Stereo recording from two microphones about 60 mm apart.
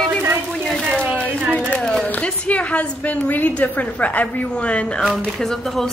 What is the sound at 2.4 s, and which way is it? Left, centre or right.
A woman's voice, left.